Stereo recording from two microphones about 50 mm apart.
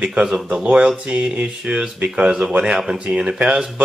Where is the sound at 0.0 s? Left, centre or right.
Right.